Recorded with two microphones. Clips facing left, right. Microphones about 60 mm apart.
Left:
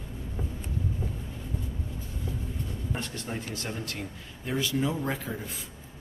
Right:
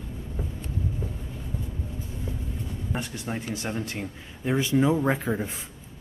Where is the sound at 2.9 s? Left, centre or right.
Centre.